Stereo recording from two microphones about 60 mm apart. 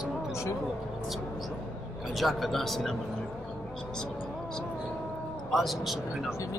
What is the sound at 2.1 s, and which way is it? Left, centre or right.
Speech, centre.